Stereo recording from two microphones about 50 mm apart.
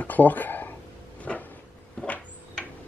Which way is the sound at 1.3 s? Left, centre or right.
Centre.